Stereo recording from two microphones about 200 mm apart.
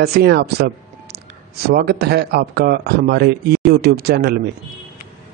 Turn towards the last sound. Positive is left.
turn(degrees=-55)  # may be behind; listen again after turning